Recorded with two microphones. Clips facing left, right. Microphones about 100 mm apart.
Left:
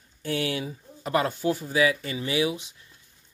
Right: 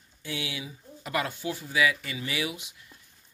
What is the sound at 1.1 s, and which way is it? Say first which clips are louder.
Speech: left 6 dB; 35° left (ahead or behind).